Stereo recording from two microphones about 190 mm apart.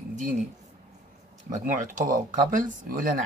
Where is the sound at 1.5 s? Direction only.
45° right (ahead or behind).